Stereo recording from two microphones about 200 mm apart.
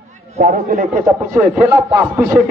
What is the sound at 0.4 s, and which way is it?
Speech, 45° right (ahead or behind).